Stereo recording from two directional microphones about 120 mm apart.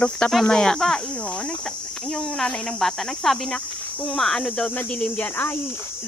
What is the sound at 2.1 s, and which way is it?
Speech, centre (ahead or behind).